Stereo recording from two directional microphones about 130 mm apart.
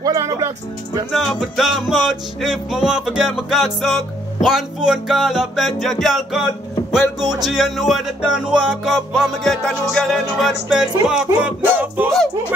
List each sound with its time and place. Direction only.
0.0 s music: 25° right (ahead or behind)
1.1 s music: centre (ahead or behind)